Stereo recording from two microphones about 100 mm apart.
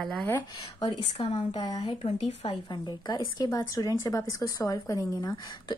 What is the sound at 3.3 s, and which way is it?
A woman's voice, 40° left (ahead or behind).